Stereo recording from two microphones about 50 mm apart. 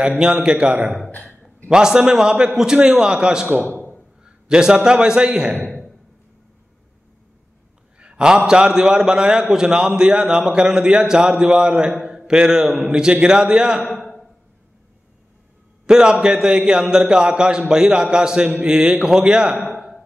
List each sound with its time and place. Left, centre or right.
0.2 s a man's voice: centre
1.1 s a sound: left
1.7 s a man's voice: centre
3.7 s a sound: left
4.2 s a man's voice: centre
8.0 s a man's voice: centre
15.9 s a man's voice: centre